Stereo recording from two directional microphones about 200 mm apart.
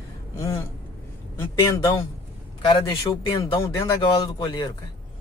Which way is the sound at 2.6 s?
20° left (ahead or behind).